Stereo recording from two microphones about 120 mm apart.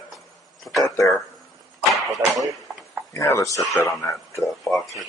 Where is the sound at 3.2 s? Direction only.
25° left (ahead or behind).